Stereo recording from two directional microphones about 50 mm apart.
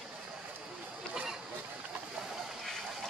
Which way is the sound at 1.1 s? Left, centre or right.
Centre.